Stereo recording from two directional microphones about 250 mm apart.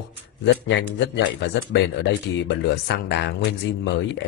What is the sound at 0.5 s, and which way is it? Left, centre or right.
Speech, left.